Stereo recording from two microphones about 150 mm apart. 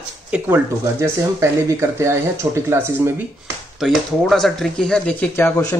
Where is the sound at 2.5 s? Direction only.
15° right (ahead or behind).